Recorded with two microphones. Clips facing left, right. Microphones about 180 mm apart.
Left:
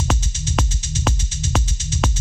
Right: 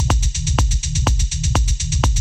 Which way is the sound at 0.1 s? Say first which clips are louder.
Left 1 dB; 5° right (ahead or behind).